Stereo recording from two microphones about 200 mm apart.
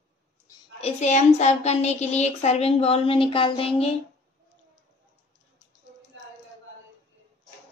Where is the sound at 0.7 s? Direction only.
35° left (ahead or behind).